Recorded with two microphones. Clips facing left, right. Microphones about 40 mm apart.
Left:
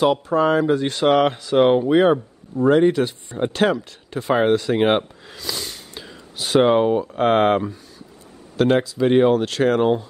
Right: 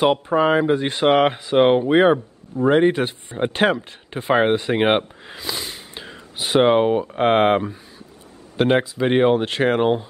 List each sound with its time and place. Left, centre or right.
0.0 s speech: right